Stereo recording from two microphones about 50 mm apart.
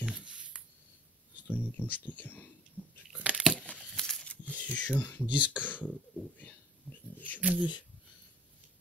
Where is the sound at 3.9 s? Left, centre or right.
Centre.